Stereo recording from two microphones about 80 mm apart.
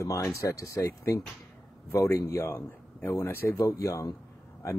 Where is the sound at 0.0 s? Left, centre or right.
Left.